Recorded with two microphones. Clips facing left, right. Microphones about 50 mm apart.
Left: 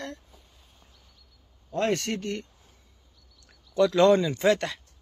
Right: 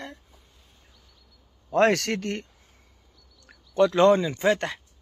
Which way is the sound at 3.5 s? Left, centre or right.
Right.